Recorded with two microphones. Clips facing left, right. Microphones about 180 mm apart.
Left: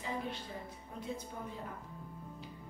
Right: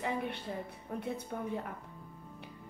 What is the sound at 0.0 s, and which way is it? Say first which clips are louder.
A woman's voice: right 4 dB; 60° right (ahead or behind).